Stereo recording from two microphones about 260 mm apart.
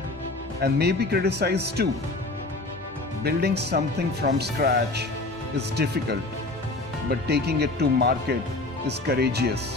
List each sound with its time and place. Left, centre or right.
0.6 s speech: right
3.3 s speech: right